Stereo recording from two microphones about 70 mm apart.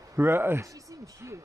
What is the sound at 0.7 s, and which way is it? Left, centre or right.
Speech, right.